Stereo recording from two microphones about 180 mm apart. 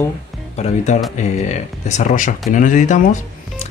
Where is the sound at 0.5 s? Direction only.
40° left (ahead or behind).